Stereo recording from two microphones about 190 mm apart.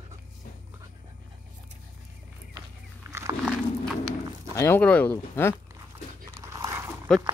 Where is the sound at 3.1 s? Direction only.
20° right (ahead or behind).